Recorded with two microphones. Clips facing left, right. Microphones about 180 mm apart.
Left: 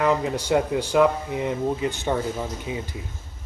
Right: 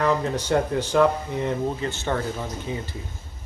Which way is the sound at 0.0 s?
10° left (ahead or behind).